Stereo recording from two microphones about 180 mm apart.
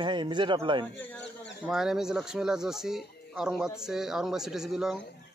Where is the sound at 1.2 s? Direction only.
75° left (ahead or behind).